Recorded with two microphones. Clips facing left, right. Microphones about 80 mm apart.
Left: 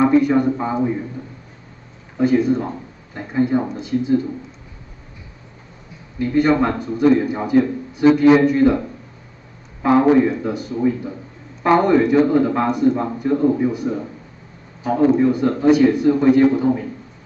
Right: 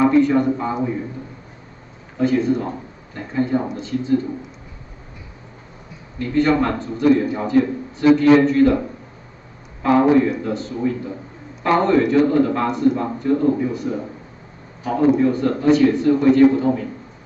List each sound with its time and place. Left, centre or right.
0.0 s a man's voice: centre
2.1 s a man's voice: centre
6.1 s a man's voice: centre
9.8 s a man's voice: centre